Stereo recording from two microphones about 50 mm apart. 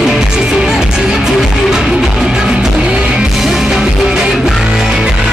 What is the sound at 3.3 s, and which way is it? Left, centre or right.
Music, centre.